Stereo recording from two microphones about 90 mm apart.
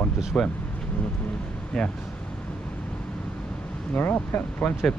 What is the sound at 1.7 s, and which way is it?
Speech, 5° left (ahead or behind).